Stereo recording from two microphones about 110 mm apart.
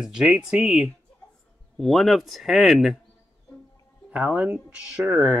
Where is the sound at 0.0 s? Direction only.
5° right (ahead or behind).